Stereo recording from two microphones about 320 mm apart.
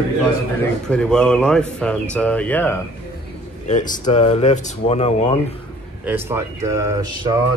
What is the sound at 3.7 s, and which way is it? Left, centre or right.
Speech, left.